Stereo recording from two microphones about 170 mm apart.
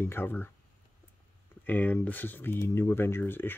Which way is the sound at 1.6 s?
10° left (ahead or behind).